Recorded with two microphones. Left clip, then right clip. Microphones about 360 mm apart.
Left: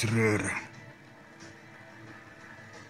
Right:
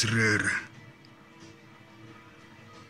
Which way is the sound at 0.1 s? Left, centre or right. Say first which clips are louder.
Right 1 dB; centre.